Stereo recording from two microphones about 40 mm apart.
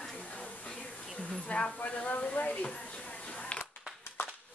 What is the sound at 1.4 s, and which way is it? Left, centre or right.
Speech, left.